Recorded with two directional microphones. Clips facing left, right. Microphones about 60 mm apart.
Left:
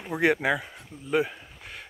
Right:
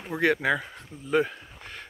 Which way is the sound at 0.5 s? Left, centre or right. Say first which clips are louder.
Right 1 dB; centre.